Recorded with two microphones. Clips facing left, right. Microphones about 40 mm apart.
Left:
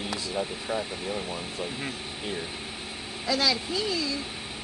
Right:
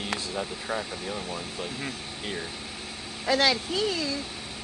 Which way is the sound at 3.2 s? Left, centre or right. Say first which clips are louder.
Right 3 dB; right.